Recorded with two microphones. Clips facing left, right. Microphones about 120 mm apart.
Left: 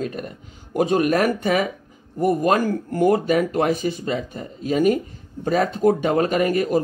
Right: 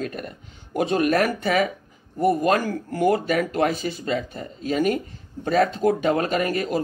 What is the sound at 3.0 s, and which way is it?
Speech, 25° left (ahead or behind).